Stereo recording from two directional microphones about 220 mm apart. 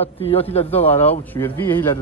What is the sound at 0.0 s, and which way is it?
Speech, 25° left (ahead or behind).